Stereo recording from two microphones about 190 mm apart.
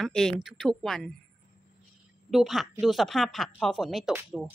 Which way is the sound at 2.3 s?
Centre (ahead or behind).